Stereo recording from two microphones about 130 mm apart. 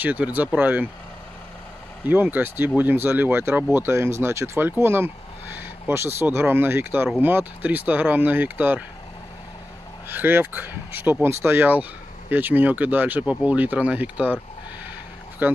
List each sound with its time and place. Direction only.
0.0 s speech: 10° right (ahead or behind)
2.0 s speech: 15° right (ahead or behind)
10.0 s speech: 15° right (ahead or behind)
15.4 s speech: 15° right (ahead or behind)